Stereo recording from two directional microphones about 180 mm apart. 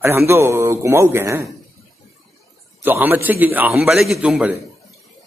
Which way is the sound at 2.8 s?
10° right (ahead or behind).